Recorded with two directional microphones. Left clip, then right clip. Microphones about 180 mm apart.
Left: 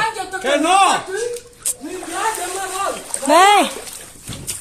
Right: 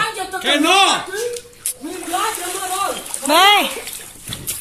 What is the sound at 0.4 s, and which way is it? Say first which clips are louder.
Speech: even; 50° left (ahead or behind).